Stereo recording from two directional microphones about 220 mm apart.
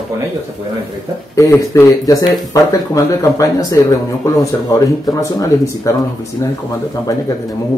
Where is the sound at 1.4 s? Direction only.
15° left (ahead or behind).